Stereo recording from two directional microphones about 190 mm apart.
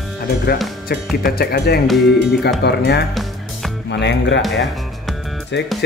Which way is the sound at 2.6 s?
60° left (ahead or behind).